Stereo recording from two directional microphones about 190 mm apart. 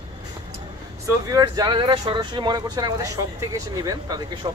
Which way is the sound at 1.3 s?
20° right (ahead or behind).